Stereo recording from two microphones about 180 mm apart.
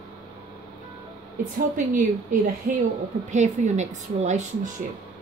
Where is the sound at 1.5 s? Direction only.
45° right (ahead or behind).